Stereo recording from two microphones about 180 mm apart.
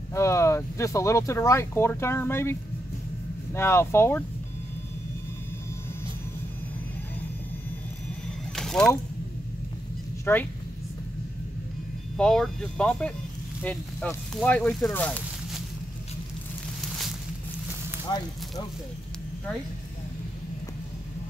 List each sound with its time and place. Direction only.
0.1 s speech: 15° left (ahead or behind)
3.5 s speech: 15° left (ahead or behind)
8.5 s a sound: 5° left (ahead or behind)
10.3 s speech: 10° left (ahead or behind)
12.2 s speech: 5° left (ahead or behind)
18.1 s speech: 20° left (ahead or behind)